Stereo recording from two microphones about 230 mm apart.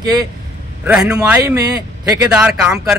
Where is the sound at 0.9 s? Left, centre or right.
Centre.